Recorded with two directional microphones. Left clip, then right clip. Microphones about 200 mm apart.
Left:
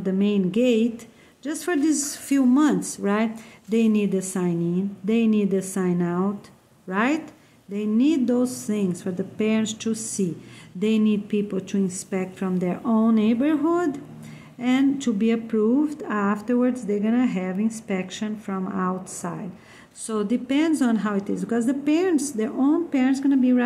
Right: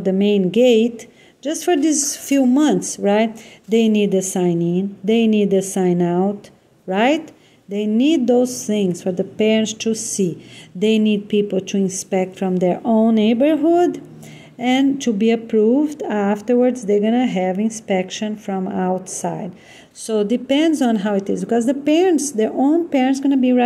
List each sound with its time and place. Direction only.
0.0 s speech: 30° right (ahead or behind)